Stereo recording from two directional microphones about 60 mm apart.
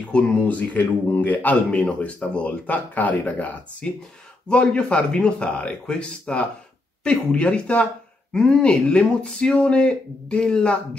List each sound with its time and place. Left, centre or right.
0.0 s speech: left